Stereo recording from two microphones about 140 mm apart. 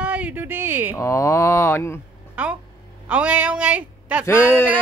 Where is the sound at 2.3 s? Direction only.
10° right (ahead or behind).